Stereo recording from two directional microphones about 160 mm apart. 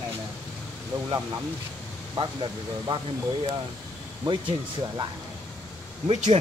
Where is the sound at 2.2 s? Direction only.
30° right (ahead or behind).